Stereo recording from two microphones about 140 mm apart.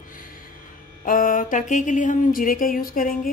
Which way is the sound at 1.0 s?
75° left (ahead or behind).